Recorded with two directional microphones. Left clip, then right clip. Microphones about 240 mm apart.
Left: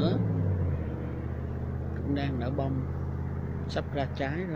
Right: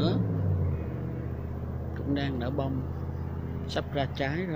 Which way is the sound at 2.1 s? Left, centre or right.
Centre.